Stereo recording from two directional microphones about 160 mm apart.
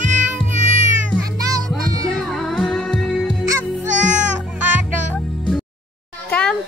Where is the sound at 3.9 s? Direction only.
50° right (ahead or behind).